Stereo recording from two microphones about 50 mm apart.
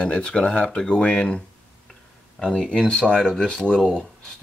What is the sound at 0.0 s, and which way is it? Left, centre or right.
Speech, centre.